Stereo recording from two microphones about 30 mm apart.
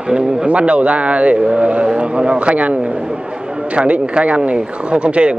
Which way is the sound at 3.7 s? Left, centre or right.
Right.